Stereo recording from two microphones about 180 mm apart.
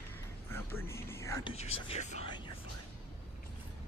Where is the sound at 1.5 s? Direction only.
35° left (ahead or behind).